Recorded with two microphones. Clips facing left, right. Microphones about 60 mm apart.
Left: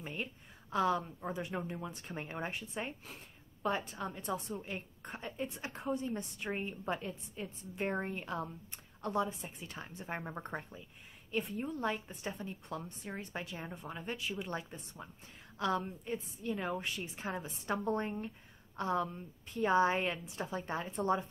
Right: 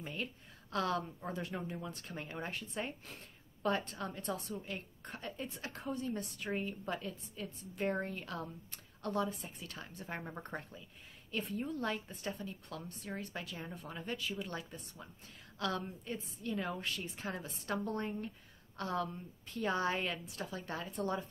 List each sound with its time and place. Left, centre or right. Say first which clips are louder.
0.0 s a woman's voice: even; centre
4.5 s a woman's voice: left 1 dB; left
14.3 s a woman's voice: left 2 dB; left